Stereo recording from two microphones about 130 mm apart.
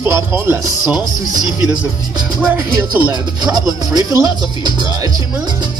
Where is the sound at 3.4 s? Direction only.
30° right (ahead or behind).